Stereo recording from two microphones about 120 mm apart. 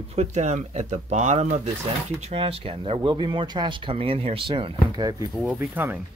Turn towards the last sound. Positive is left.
turn(degrees=-15)  # may be behind; listen again after turning